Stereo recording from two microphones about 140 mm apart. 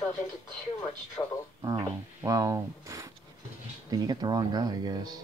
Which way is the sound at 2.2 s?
25° right (ahead or behind).